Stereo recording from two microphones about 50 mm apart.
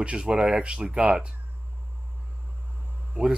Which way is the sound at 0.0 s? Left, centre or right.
Centre.